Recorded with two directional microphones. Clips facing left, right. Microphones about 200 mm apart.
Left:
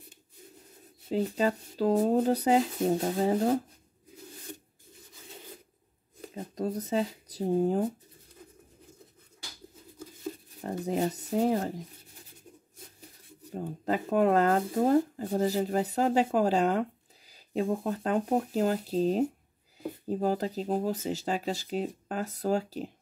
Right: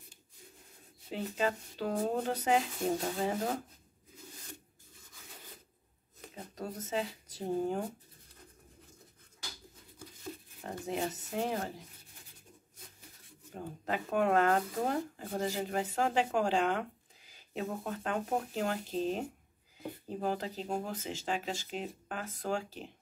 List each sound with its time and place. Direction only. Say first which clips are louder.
1.1 s speech: left 6 dB; 35° left (ahead or behind)
6.3 s speech: left 9 dB; 35° left (ahead or behind)
10.6 s speech: left 7 dB; 35° left (ahead or behind)
13.5 s speech: left 6 dB; 35° left (ahead or behind)